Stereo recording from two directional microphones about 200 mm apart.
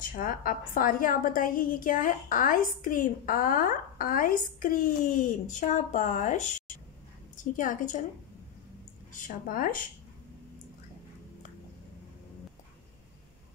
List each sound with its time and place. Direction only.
0.0 s a woman's voice: 45° left (ahead or behind)
7.5 s a woman's voice: 40° left (ahead or behind)
9.1 s a woman's voice: 40° left (ahead or behind)